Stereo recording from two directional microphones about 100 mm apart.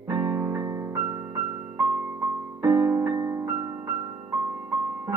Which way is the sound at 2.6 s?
30° right (ahead or behind).